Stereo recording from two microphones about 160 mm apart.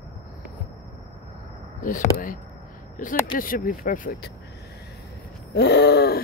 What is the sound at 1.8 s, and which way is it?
Speech, 55° left (ahead or behind).